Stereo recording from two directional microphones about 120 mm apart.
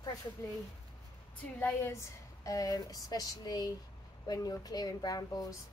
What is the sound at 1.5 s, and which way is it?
A woman's voice, 20° left (ahead or behind).